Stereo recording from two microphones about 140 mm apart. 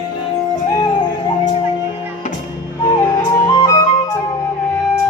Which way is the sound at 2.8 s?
30° left (ahead or behind).